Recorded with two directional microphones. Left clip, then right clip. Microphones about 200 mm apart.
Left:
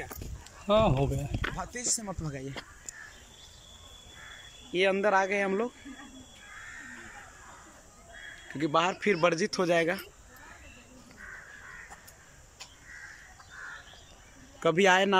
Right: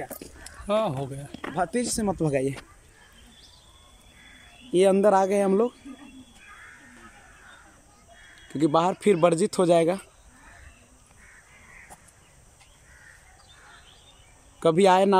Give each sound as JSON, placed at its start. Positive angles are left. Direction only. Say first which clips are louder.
{"t": 0.2, "sound": "a sound", "louder": "right 4 dB", "side_deg": 0}
{"t": 1.6, "sound": "speech", "louder": "right 8 dB", "side_deg": -60}
{"t": 4.7, "sound": "speech", "louder": "right 6 dB", "side_deg": -25}
{"t": 8.5, "sound": "speech", "louder": "right 5 dB", "side_deg": -25}
{"t": 14.6, "sound": "speech", "louder": "right 4 dB", "side_deg": -20}